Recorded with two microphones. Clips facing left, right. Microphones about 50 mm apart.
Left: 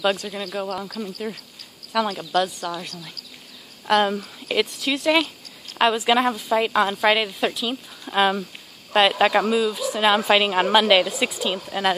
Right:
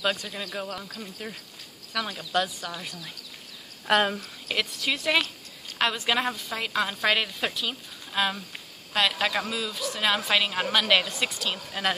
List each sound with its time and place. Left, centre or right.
0.2 s speech: centre
4.1 s a woman's voice: centre
8.1 s speech: left
9.5 s a woman's voice: centre
10.8 s a woman's voice: centre